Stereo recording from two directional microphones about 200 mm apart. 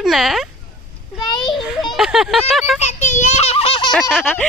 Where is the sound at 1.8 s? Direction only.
Centre (ahead or behind).